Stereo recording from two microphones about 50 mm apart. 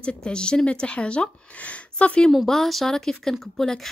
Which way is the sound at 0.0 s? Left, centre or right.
Centre.